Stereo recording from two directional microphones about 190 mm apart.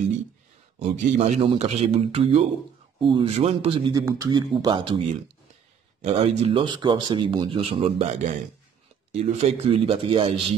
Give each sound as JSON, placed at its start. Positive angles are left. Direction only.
{"t": 0.7, "sound": "a man's voice", "side_deg": -35}
{"t": 6.0, "sound": "a man's voice", "side_deg": -35}